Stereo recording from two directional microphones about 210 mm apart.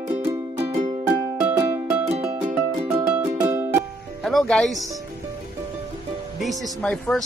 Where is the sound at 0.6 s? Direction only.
25° right (ahead or behind).